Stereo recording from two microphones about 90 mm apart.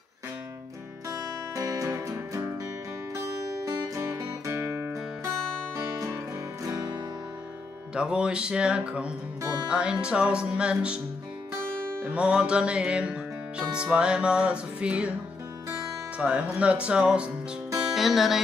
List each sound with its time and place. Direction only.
1.5 s music: 40° right (ahead or behind)
6.6 s music: 45° right (ahead or behind)
7.9 s music: 10° right (ahead or behind)
11.8 s music: 25° right (ahead or behind)
12.1 s music: 10° right (ahead or behind)
16.2 s music: 15° right (ahead or behind)